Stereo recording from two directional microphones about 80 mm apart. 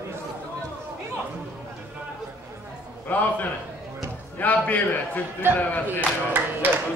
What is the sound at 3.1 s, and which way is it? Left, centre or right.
Speech, left.